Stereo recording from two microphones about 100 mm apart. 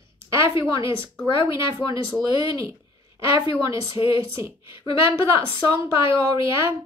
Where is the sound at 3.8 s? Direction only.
60° left (ahead or behind).